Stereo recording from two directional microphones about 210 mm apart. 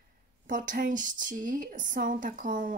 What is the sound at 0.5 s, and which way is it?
Speech, 40° right (ahead or behind).